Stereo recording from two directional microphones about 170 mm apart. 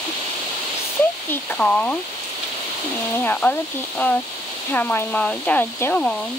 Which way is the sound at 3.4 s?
10° left (ahead or behind).